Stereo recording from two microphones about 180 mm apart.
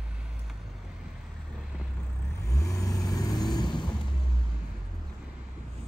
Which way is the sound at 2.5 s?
20° left (ahead or behind).